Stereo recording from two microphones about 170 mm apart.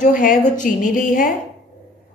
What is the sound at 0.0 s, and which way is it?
A woman's voice, 50° left (ahead or behind).